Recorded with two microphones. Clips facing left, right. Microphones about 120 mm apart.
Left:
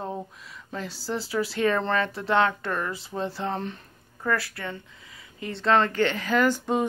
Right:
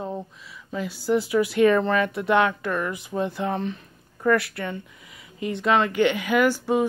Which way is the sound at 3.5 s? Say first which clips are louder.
Right 4 dB; centre (ahead or behind).